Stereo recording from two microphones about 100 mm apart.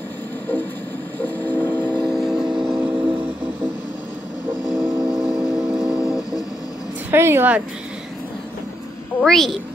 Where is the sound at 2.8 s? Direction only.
25° right (ahead or behind).